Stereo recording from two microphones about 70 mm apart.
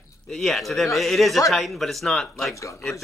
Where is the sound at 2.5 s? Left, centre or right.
Left.